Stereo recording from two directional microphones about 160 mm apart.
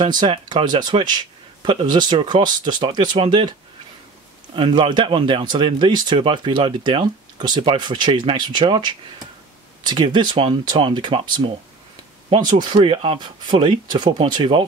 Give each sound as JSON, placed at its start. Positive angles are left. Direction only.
{"t": 0.0, "sound": "speech", "side_deg": -30}
{"t": 4.6, "sound": "speech", "side_deg": -30}
{"t": 12.5, "sound": "speech", "side_deg": -30}